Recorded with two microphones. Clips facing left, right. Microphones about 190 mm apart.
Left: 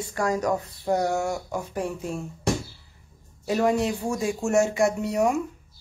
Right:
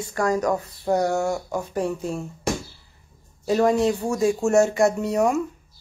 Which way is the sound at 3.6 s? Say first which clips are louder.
Right 3 dB; 35° right (ahead or behind).